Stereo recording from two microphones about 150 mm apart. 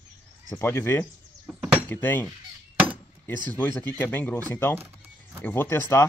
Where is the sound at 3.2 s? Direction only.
10° left (ahead or behind).